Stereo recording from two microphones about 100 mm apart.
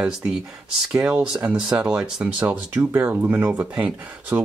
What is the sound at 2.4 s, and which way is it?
Speech, 20° right (ahead or behind).